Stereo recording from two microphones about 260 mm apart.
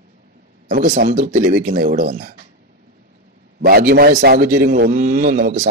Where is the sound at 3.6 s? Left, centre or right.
Right.